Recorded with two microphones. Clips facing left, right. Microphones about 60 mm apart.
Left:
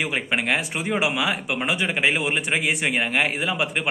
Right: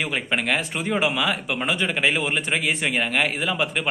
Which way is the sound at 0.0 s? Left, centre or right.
Left.